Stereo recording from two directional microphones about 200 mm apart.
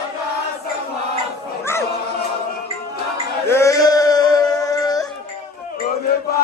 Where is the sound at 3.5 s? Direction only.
15° left (ahead or behind).